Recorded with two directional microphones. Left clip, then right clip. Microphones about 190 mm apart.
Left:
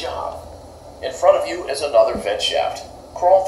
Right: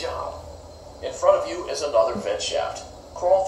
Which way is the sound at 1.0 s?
15° right (ahead or behind).